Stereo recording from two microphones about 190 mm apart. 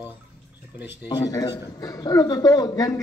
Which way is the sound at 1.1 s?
20° left (ahead or behind).